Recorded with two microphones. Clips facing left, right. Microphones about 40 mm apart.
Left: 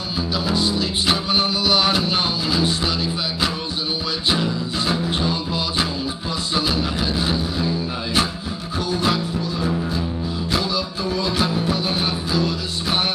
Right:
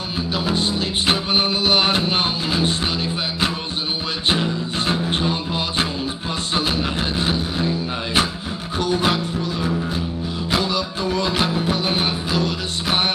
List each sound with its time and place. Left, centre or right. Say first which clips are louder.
0.3 s music: even; right